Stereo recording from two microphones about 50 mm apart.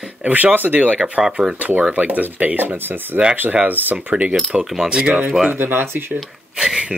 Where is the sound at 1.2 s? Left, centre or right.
Centre.